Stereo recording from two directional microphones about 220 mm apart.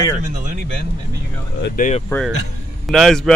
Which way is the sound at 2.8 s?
Centre (ahead or behind).